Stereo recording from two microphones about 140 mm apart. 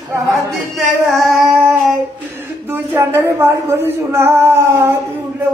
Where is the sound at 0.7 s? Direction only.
Centre (ahead or behind).